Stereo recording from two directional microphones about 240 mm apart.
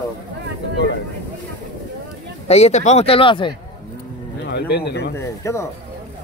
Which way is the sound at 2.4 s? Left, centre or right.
Left.